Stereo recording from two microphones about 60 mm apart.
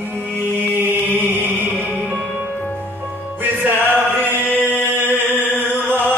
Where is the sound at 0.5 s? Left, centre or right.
Right.